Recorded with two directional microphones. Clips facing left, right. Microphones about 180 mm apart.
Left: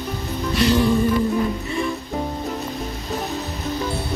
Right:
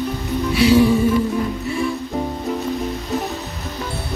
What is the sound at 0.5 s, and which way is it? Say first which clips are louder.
Music: right 4 dB; 5° right (ahead or behind).